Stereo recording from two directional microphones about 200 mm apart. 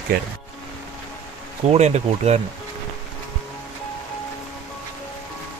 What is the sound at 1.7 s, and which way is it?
Speech, 35° right (ahead or behind).